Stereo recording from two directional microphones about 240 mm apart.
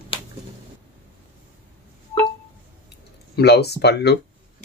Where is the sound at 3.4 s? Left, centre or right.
Left.